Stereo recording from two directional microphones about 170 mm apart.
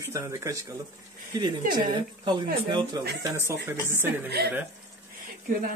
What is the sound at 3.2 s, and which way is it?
Speech, 15° right (ahead or behind).